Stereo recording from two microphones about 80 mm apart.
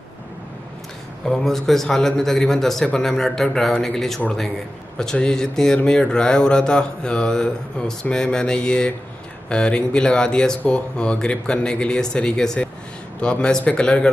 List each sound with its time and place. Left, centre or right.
1.2 s speech: centre